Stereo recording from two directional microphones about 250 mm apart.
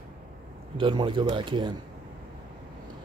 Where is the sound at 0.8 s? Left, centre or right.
Centre.